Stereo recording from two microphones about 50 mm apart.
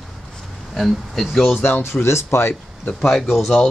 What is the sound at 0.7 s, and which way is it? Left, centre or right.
Speech, centre.